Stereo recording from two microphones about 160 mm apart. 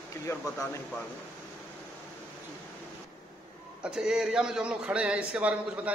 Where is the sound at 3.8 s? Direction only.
5° right (ahead or behind).